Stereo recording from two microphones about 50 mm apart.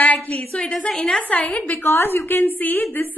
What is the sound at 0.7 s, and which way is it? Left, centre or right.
Speech, centre.